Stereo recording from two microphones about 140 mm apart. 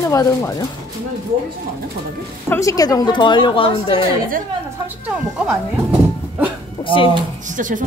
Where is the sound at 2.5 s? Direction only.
25° left (ahead or behind); by 4.1 s 40° left (ahead or behind).